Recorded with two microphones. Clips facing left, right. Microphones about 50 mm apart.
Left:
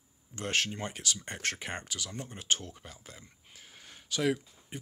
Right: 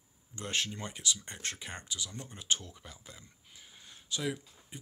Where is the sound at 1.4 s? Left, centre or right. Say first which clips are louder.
Left 6 dB; left.